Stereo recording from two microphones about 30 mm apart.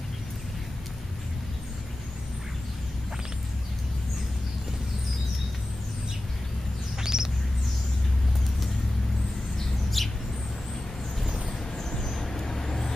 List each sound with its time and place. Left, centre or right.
7.0 s bird: centre
10.0 s bird: centre
11.4 s a sound: centre
12.2 s vehicle: centre